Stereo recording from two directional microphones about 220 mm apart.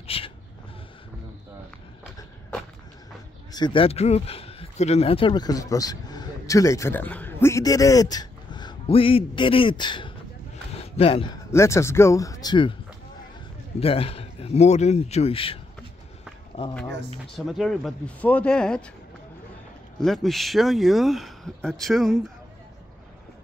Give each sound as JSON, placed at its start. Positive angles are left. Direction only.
{"t": 0.0, "sound": "vehicle", "side_deg": 25}
{"t": 3.5, "sound": "speech", "side_deg": 20}
{"t": 10.7, "sound": "a sound", "side_deg": 25}
{"t": 11.5, "sound": "speech", "side_deg": 15}
{"t": 13.7, "sound": "speech", "side_deg": 25}
{"t": 17.4, "sound": "speech", "side_deg": 0}
{"t": 20.0, "sound": "speech", "side_deg": 0}